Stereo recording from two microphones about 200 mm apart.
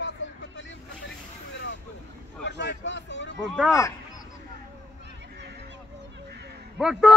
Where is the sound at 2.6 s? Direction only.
60° left (ahead or behind).